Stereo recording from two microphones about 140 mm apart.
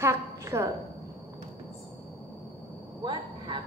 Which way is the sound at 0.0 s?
20° right (ahead or behind).